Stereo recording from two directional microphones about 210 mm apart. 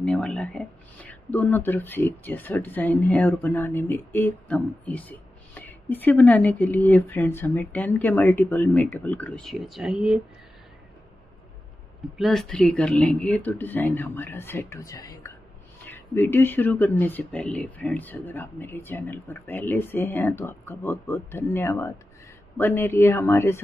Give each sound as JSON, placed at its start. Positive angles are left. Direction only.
{"t": 0.0, "sound": "speech", "side_deg": 5}
{"t": 12.2, "sound": "speech", "side_deg": 0}